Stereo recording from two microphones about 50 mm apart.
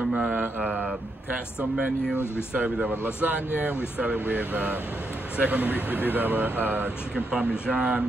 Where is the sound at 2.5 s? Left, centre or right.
Right.